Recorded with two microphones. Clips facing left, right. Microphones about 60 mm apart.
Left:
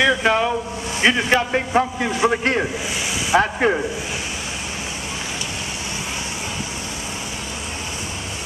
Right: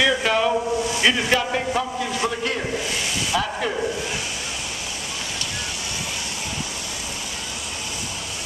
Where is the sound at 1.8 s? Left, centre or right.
Left.